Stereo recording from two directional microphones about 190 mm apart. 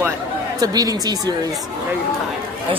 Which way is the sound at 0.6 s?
20° right (ahead or behind).